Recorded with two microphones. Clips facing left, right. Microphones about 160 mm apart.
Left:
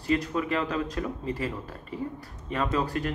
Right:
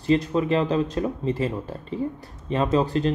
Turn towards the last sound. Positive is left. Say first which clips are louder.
# right 7 dB
turn(degrees=-25)  # may be behind; listen again after turning